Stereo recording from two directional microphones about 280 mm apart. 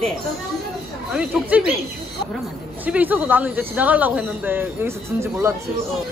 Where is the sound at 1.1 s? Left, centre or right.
Centre.